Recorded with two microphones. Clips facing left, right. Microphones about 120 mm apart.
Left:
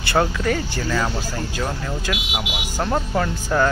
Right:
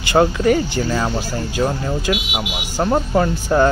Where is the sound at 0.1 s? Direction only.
20° right (ahead or behind).